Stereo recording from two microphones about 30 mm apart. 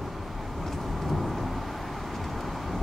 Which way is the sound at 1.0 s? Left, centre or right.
Centre.